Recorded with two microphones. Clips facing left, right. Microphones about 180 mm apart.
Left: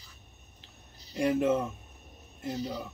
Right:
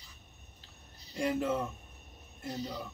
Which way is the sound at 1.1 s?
20° left (ahead or behind).